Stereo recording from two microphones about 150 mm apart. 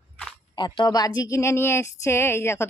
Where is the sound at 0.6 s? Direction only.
30° left (ahead or behind).